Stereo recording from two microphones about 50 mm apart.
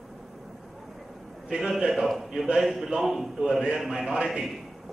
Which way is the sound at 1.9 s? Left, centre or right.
Centre.